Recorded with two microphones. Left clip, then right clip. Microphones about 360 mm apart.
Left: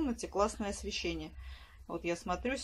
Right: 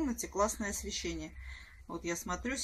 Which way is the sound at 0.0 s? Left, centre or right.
Centre.